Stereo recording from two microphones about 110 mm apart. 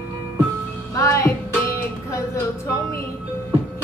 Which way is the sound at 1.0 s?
25° left (ahead or behind).